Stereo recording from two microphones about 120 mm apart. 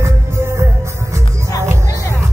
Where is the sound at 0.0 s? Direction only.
25° right (ahead or behind).